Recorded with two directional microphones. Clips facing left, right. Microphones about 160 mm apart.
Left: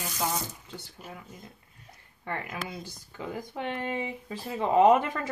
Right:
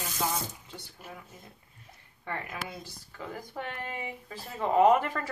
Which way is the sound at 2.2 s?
5° left (ahead or behind).